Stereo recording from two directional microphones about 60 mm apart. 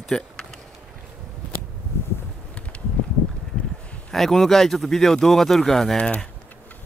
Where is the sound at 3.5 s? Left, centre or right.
Centre.